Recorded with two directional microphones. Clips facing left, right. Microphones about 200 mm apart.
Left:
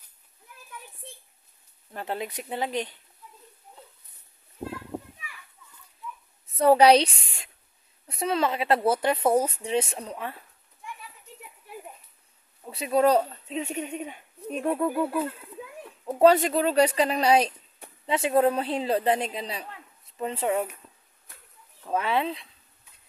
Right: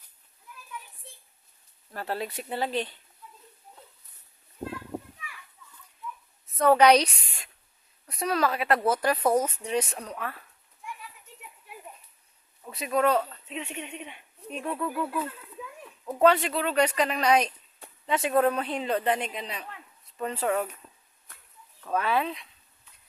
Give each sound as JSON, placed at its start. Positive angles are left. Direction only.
{"t": 1.9, "sound": "speech", "side_deg": 20}
{"t": 6.4, "sound": "a woman's voice", "side_deg": 30}
{"t": 12.6, "sound": "speech", "side_deg": 30}
{"t": 21.8, "sound": "speech", "side_deg": 25}